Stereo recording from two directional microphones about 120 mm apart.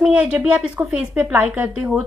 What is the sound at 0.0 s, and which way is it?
A woman's voice, 10° right (ahead or behind).